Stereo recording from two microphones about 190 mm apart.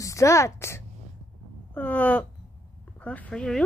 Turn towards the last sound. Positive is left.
turn(degrees=5)  # may be behind; listen again after turning